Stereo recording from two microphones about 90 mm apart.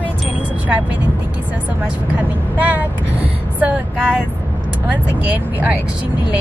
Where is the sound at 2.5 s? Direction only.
20° right (ahead or behind).